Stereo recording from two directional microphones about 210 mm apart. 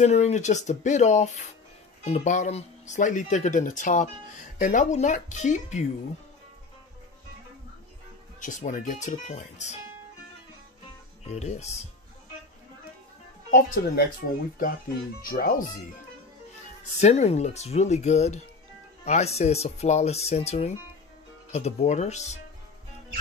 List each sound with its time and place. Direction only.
0.0 s speech: 30° left (ahead or behind)
8.4 s speech: 40° left (ahead or behind)
11.2 s speech: 30° left (ahead or behind)
13.5 s speech: 50° left (ahead or behind)
15.2 s speech: 45° left (ahead or behind)
17.0 s speech: 30° left (ahead or behind)